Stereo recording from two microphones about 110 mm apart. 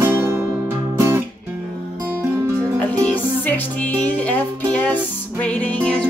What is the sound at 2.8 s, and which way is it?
Music, 15° left (ahead or behind).